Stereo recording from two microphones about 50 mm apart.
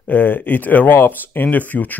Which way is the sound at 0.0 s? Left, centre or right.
Left.